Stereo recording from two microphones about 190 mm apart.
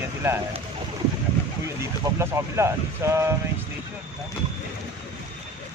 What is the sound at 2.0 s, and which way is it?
Speech, 15° right (ahead or behind).